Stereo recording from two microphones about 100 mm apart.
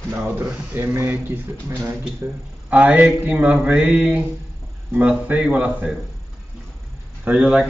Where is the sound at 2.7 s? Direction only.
15° right (ahead or behind).